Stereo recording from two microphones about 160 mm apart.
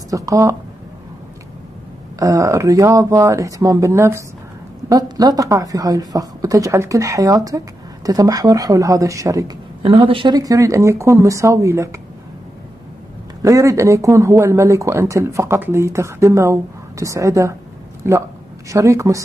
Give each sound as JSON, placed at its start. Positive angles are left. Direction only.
{"t": 0.1, "sound": "speech", "side_deg": -20}
{"t": 2.1, "sound": "speech", "side_deg": -20}
{"t": 10.0, "sound": "speech", "side_deg": -30}
{"t": 13.4, "sound": "speech", "side_deg": -20}